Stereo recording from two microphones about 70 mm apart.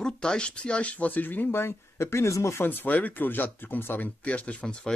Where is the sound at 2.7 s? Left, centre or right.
Left.